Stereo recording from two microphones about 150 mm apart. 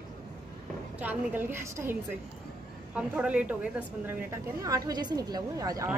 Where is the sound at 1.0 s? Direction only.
10° right (ahead or behind).